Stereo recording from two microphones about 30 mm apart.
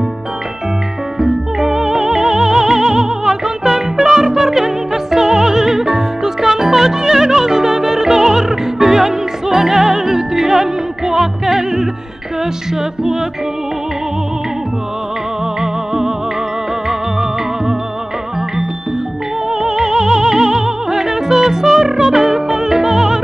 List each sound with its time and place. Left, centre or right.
1.2 s music: centre
15.6 s music: centre
19.6 s music: centre